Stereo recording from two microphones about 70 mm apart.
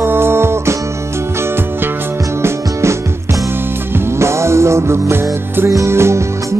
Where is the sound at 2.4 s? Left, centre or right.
Right.